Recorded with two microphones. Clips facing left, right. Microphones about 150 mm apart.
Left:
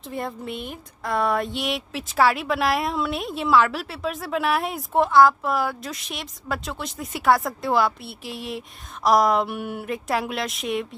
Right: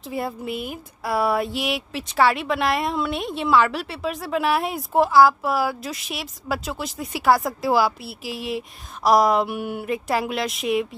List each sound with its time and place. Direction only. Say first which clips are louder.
0.1 s speech: right 3 dB; 5° right (ahead or behind)